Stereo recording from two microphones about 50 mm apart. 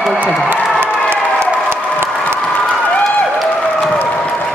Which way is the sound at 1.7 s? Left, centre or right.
Right.